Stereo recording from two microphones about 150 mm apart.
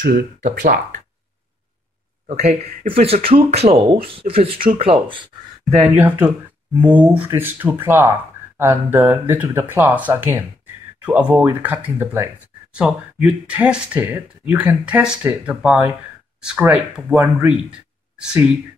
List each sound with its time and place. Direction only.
0.0 s speech: 60° right (ahead or behind)
2.2 s speech: 45° right (ahead or behind)
5.9 s speech: 10° right (ahead or behind)
17.5 s a sound: 5° right (ahead or behind)